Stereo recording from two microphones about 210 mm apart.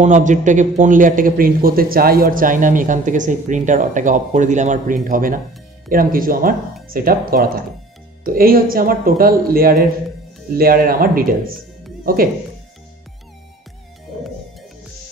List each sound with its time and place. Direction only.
0.0 s a man's voice: 35° right (ahead or behind)